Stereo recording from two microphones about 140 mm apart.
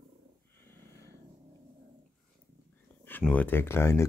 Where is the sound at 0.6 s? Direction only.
15° left (ahead or behind).